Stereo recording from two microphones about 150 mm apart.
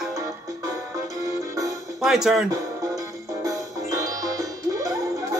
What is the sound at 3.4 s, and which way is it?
Music, 20° right (ahead or behind).